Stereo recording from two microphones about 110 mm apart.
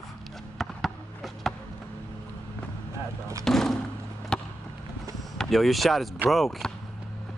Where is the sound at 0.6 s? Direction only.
Centre (ahead or behind).